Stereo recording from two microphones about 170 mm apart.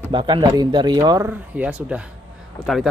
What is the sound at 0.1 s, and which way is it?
Speech, 30° right (ahead or behind).